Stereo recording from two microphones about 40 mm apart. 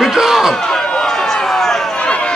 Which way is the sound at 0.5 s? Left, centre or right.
Centre.